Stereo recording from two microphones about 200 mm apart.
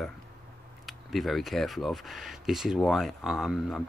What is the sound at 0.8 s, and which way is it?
Speech, centre (ahead or behind).